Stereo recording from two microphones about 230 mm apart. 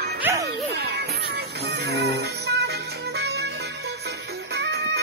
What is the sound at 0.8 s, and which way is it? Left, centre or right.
Music, right.